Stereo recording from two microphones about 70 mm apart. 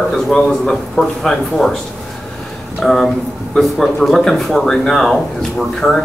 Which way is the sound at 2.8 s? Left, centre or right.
Centre.